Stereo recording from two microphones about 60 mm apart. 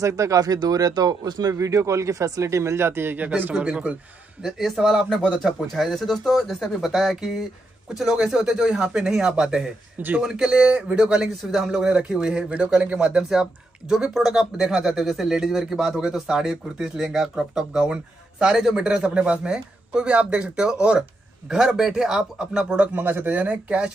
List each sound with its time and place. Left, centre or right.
0.0 s speech: right
3.3 s speech: right
3.5 s speech: centre
4.4 s speech: centre
9.9 s speech: right
10.2 s speech: centre
22.9 s speech: right